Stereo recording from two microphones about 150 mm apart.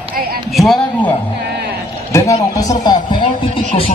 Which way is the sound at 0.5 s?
Centre (ahead or behind).